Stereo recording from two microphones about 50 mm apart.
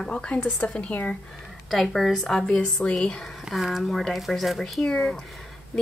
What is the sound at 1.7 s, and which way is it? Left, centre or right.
Speech, centre.